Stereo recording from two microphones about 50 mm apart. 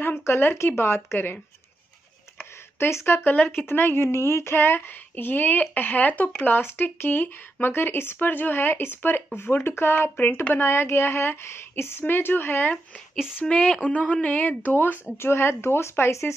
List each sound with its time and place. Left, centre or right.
0.0 s a woman's voice: left
2.8 s speech: left
3.3 s a woman's voice: left
4.6 s speech: left
6.6 s a woman's voice: left
13.5 s speech: left
15.1 s speech: left